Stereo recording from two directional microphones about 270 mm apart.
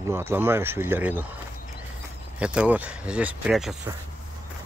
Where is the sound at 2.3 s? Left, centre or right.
Centre.